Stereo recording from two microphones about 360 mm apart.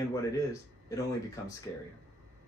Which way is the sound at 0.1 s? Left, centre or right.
Centre.